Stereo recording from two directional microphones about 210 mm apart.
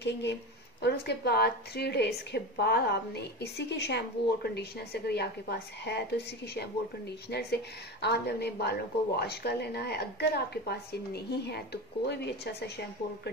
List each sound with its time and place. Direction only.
0.0 s a woman's voice: 55° left (ahead or behind)